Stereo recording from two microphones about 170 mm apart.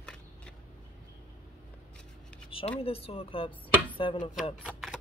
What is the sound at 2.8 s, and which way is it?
Speech, 35° left (ahead or behind).